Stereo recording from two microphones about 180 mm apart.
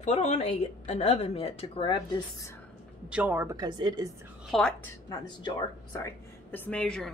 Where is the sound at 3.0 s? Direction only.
10° right (ahead or behind).